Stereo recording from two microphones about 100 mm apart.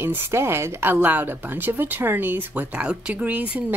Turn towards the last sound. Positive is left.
turn(degrees=-15)  # may be behind; listen again after turning